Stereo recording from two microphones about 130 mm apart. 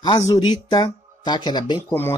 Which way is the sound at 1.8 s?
20° left (ahead or behind).